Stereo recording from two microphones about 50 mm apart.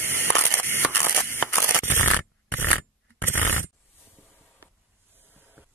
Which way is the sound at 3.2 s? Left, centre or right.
Left.